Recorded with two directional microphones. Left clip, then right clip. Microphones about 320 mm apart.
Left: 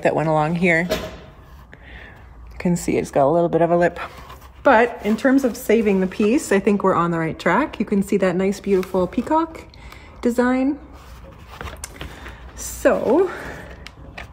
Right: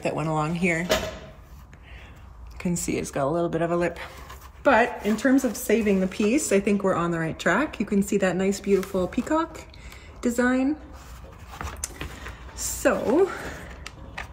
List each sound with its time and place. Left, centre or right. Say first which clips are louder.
0.1 s speech: left 8 dB; centre
2.5 s a sound: left 7 dB; left
2.8 s speech: left 9 dB; centre
12.8 s speech: left 5 dB; centre